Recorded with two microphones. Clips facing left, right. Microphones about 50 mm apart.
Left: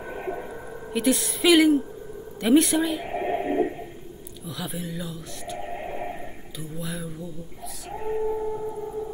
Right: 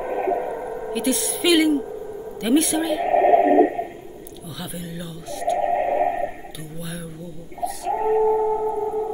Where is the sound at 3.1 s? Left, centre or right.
Right.